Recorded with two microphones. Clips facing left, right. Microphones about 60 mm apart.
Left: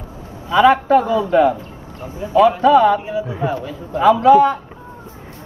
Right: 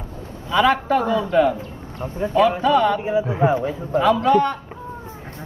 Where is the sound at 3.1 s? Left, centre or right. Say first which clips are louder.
Right 3 dB; right.